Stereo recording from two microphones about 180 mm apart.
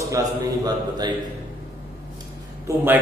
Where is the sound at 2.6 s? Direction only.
10° right (ahead or behind).